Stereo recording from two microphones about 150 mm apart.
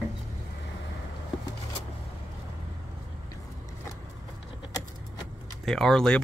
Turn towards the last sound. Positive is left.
turn(degrees=5)  # may be behind; listen again after turning